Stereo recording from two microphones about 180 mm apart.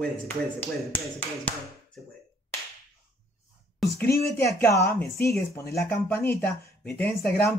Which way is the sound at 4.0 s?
15° left (ahead or behind).